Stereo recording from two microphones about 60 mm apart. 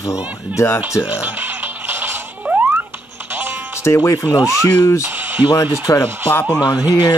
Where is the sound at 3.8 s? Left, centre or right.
Left.